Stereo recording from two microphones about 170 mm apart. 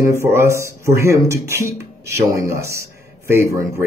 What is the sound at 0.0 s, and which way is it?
Speech, 15° right (ahead or behind).